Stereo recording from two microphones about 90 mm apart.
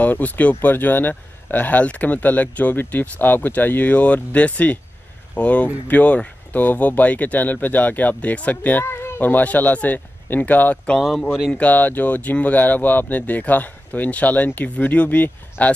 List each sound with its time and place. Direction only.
0.0 s speech: 20° left (ahead or behind)
11.0 s speech: centre (ahead or behind)
11.5 s speech: 15° left (ahead or behind)